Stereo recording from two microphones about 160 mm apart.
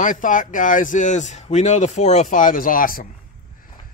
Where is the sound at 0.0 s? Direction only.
55° left (ahead or behind).